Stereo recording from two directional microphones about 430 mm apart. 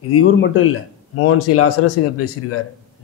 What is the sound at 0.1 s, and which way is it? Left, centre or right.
A man's voice, left.